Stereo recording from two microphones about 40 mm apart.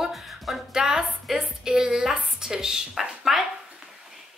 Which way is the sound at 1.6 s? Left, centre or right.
Centre.